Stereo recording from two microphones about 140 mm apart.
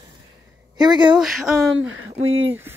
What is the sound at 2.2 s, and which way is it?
Speech, 45° right (ahead or behind).